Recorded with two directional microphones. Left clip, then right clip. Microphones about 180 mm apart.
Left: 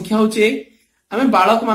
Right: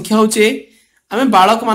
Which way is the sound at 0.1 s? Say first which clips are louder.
Right 3 dB; 50° right (ahead or behind).